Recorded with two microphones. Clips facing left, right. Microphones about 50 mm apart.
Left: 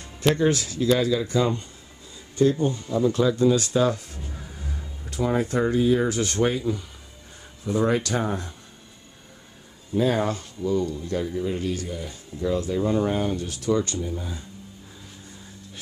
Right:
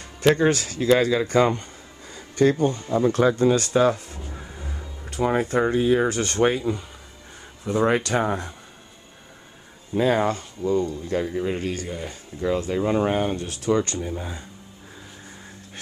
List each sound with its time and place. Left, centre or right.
0.4 s speech: right
2.1 s a sound: right
2.9 s speech: right
9.9 s speech: right
14.0 s speech: right